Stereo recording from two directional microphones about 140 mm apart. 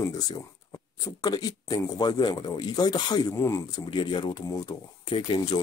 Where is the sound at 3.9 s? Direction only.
35° left (ahead or behind).